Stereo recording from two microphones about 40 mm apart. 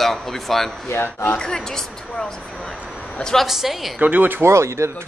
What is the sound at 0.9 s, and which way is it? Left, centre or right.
Speech, left.